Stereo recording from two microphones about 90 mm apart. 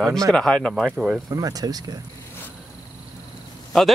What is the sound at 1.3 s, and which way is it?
Speech, 45° right (ahead or behind).